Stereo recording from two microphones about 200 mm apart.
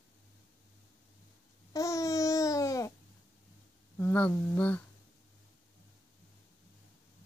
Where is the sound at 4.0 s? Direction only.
10° left (ahead or behind).